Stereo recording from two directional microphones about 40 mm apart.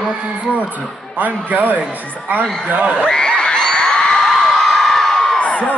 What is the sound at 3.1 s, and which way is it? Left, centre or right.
Crowd, left.